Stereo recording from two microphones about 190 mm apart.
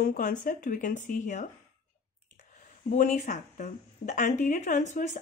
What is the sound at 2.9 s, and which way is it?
Speech, 40° left (ahead or behind).